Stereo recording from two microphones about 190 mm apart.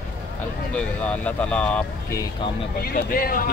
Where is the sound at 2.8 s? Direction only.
50° left (ahead or behind).